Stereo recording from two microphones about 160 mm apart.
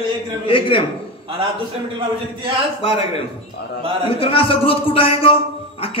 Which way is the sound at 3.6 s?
90° left.